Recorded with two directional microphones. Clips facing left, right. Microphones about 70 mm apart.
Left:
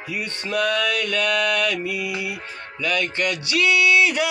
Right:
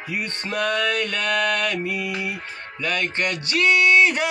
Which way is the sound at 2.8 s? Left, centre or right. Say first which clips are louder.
Left 1 dB; right.